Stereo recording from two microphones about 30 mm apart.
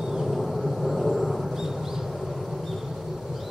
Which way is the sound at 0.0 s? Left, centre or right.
Centre.